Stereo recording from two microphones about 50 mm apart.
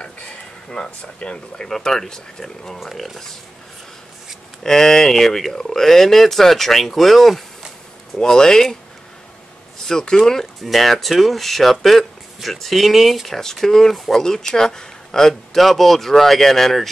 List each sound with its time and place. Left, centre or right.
0.7 s speech: centre
1.7 s speech: centre
4.6 s speech: centre
8.2 s speech: centre
9.8 s speech: centre